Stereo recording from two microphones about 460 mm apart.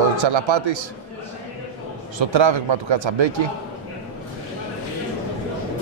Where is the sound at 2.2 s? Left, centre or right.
Right.